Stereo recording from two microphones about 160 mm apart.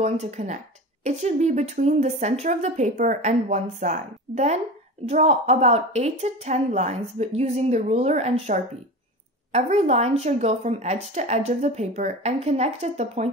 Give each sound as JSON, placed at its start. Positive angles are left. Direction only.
{"t": 0.0, "sound": "speech", "side_deg": -45}